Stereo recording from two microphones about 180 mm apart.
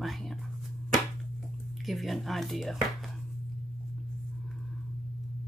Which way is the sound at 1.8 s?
Centre (ahead or behind).